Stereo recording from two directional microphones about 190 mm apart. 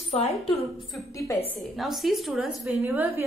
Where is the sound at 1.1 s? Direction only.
15° left (ahead or behind).